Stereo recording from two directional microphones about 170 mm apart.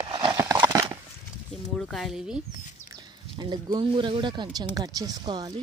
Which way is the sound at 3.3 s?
25° right (ahead or behind).